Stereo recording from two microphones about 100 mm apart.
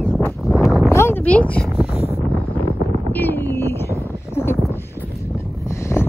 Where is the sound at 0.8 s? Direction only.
25° left (ahead or behind).